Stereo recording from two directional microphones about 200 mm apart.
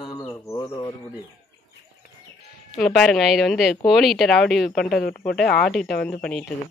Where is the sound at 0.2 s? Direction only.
15° left (ahead or behind).